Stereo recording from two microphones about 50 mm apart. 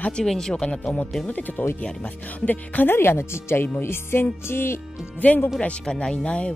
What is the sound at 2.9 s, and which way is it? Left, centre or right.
Music, left.